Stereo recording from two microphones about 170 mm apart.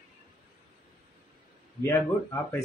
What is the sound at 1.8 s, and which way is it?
Speech, 15° left (ahead or behind).